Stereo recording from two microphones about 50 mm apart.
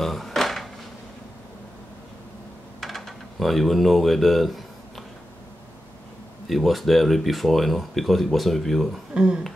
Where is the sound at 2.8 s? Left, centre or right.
Centre.